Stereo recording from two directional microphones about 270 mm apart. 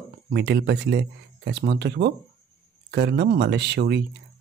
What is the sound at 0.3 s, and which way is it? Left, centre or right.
Speech, right.